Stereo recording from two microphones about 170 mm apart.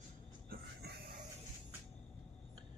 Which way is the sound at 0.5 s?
65° right (ahead or behind).